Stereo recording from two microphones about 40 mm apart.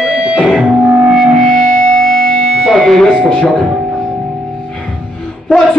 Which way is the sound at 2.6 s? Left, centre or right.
Centre.